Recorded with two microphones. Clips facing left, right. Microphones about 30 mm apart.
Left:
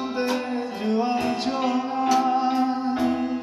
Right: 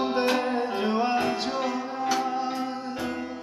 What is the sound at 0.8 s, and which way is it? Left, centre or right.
Music, centre.